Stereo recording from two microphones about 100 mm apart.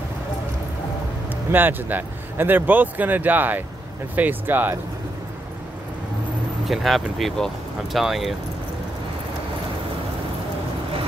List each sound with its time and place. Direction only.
1.3 s speech: 20° right (ahead or behind)
6.7 s speech: centre (ahead or behind)